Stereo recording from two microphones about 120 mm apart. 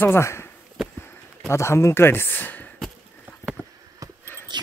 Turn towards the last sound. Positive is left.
turn(degrees=-40)  # may be behind; listen again after turning